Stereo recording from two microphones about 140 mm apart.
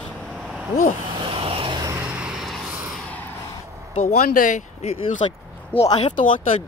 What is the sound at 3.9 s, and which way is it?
Speech, 60° left (ahead or behind).